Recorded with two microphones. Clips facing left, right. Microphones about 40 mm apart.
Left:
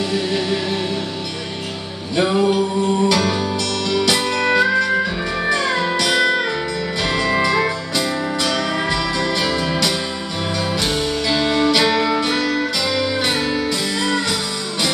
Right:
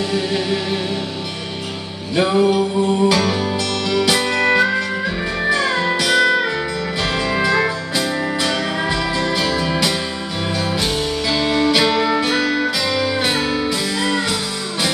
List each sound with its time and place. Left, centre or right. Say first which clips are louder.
0.1 s music: even; centre
2.1 s music: right 1 dB; centre